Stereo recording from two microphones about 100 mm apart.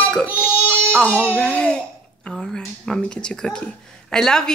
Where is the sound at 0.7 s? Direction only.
15° left (ahead or behind).